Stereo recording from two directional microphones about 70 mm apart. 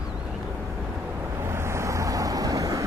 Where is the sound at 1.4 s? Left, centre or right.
Right.